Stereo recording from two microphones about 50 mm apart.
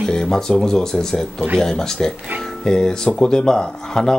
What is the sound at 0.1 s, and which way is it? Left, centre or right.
Speech, centre.